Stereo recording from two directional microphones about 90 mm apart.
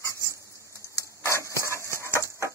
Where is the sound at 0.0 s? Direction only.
35° left (ahead or behind).